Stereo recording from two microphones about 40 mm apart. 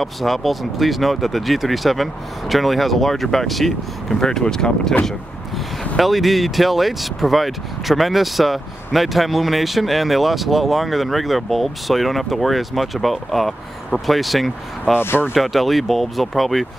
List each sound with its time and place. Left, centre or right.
0.0 s speech: centre
4.2 s speech: centre
5.9 s speech: centre
15.0 s speech: left
15.3 s speech: centre